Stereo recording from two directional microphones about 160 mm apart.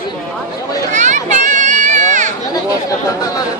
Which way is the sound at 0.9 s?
50° right (ahead or behind).